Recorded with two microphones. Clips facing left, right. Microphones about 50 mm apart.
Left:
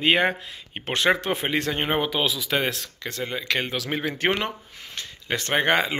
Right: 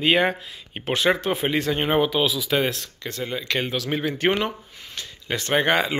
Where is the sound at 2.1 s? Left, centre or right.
Left.